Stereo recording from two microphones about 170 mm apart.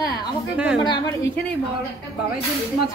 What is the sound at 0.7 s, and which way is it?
Speech, 30° left (ahead or behind).